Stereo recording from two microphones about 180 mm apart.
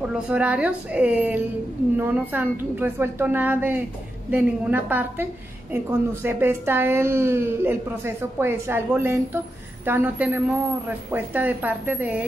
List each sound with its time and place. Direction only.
0.3 s a woman's voice: 5° right (ahead or behind)